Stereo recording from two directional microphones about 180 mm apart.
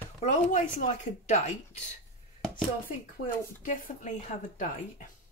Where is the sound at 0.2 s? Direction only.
40° left (ahead or behind).